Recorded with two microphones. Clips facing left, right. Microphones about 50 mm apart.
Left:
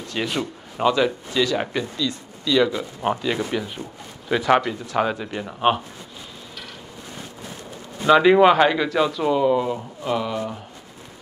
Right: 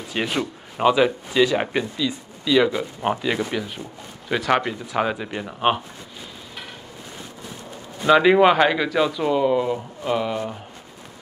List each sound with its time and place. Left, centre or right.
0.1 s speech: centre
8.0 s speech: centre